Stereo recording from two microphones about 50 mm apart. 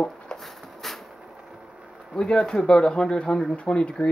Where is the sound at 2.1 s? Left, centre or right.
Centre.